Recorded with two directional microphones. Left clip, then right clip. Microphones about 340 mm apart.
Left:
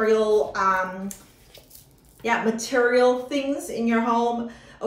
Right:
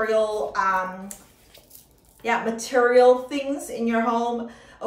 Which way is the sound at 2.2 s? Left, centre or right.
Centre.